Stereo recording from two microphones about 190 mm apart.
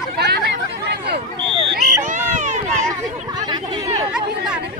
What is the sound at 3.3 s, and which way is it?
Chatter, 20° right (ahead or behind).